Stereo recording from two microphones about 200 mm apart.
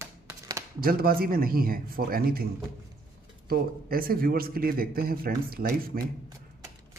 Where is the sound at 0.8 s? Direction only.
45° right (ahead or behind).